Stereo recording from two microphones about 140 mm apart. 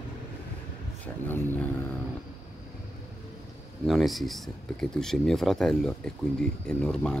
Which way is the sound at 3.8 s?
Centre (ahead or behind).